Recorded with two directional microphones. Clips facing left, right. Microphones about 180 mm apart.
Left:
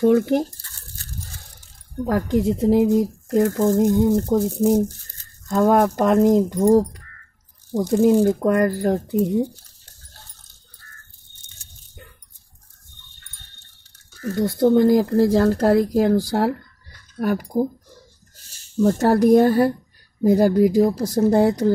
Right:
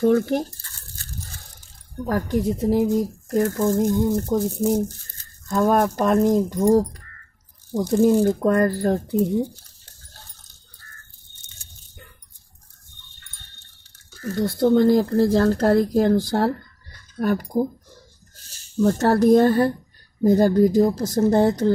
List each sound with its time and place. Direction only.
0.0 s speech: 15° left (ahead or behind)
2.0 s speech: 20° left (ahead or behind)
7.8 s speech: 10° left (ahead or behind)
14.3 s speech: 15° left (ahead or behind)
18.9 s speech: 15° left (ahead or behind)